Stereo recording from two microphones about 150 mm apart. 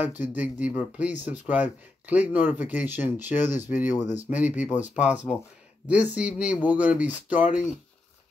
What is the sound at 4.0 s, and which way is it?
Speech, 50° left (ahead or behind).